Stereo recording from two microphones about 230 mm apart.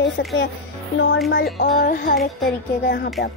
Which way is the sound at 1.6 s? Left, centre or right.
Left.